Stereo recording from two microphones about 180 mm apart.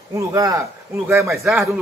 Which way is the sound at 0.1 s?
20° right (ahead or behind).